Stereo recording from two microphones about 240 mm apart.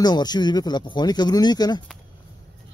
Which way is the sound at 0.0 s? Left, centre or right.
Centre.